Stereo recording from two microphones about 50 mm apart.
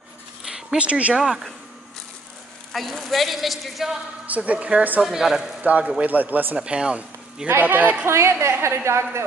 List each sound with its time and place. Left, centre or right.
0.5 s zipper: centre
0.7 s speech: right
1.1 s speech: centre
2.7 s a woman's voice: centre
4.3 s speech: right
5.1 s speech: centre
5.6 s speech: right
6.6 s speech: right
7.6 s speech: right
8.0 s a woman's voice: right